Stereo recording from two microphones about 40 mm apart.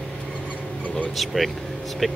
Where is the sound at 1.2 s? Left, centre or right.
Centre.